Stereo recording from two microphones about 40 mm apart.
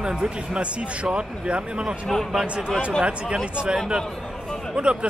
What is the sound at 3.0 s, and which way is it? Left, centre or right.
Speech, right.